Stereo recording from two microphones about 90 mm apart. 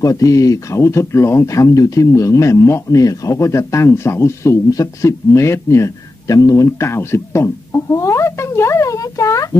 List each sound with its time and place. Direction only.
0.0 s speech: 40° left (ahead or behind)